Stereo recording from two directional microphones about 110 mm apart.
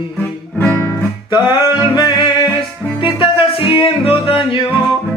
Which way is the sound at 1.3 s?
40° left (ahead or behind).